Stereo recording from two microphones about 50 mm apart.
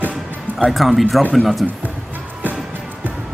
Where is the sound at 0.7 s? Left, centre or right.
Centre.